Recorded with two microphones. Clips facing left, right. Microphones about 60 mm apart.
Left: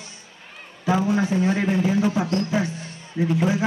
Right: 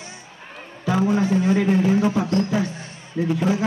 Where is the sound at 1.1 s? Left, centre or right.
Centre.